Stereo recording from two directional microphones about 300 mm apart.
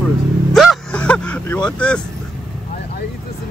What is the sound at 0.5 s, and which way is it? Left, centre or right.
Vehicle, centre.